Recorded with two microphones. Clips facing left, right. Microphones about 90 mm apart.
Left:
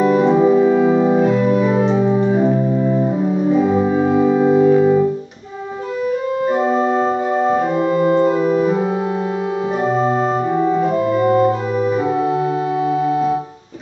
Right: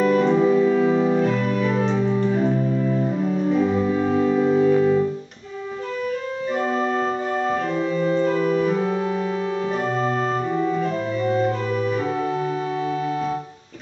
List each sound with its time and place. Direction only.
0.4 s music: 20° left (ahead or behind)
1.2 s organ: 10° left (ahead or behind)
2.2 s music: 25° left (ahead or behind)
8.0 s organ: 45° left (ahead or behind)
11.1 s organ: 50° left (ahead or behind)